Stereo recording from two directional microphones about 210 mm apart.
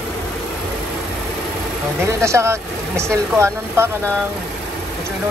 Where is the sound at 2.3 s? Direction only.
15° right (ahead or behind).